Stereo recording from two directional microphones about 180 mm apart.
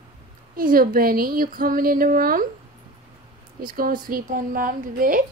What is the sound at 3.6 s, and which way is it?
A woman's voice, 55° right (ahead or behind).